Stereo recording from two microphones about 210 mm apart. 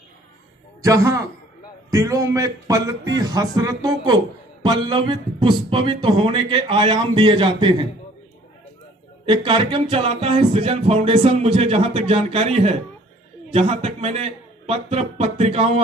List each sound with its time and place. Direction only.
0.8 s speech: 15° right (ahead or behind)
3.2 s music: 20° right (ahead or behind)
9.2 s music: 25° right (ahead or behind)